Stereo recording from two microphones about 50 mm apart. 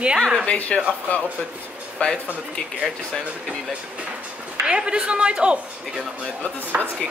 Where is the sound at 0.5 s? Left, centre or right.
Left.